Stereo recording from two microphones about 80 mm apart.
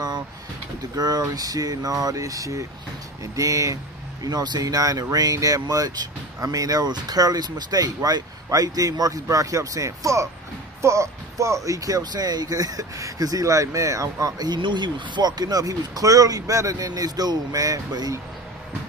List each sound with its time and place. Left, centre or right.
0.9 s speech: right
4.2 s speech: right
14.4 s speech: right